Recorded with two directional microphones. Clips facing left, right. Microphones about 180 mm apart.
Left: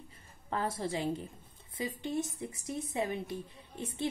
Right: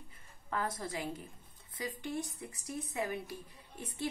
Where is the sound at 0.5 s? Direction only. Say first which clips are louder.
Left 3 dB; 25° left (ahead or behind).